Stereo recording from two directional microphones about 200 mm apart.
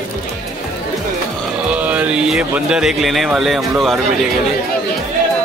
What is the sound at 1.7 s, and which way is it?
Speech, 5° right (ahead or behind).